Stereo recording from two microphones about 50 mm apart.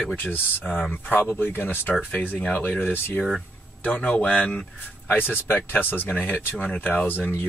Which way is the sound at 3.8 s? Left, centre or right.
Left.